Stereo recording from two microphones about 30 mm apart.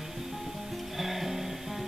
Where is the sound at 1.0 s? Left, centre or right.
Centre.